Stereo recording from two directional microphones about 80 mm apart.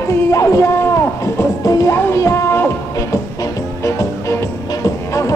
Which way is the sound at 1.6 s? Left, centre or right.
Left.